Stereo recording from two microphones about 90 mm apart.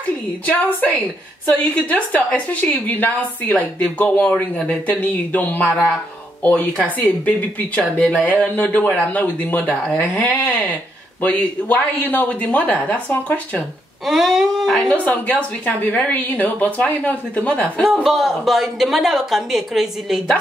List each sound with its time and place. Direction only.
0.5 s speech: 15° left (ahead or behind)
8.1 s a sound: 15° right (ahead or behind)
8.4 s speech: 15° left (ahead or behind)
9.7 s speech: 10° left (ahead or behind)
14.0 s a woman's voice: centre (ahead or behind)
15.0 s speech: 15° left (ahead or behind)
18.0 s a woman's voice: centre (ahead or behind)